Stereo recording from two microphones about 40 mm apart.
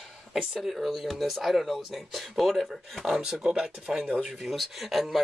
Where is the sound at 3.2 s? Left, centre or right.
Centre.